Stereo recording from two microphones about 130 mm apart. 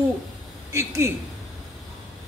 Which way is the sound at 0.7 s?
20° right (ahead or behind).